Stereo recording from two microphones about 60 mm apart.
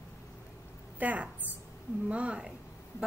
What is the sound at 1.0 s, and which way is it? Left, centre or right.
A woman's voice, right.